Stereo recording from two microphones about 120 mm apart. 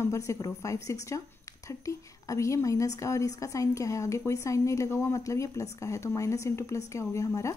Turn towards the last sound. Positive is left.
turn(degrees=25)  # may be behind; listen again after turning